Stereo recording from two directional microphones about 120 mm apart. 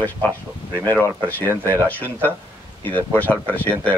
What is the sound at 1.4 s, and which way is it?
Speech, 20° right (ahead or behind).